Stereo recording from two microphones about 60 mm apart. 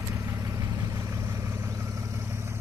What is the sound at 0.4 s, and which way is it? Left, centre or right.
Vehicle, right.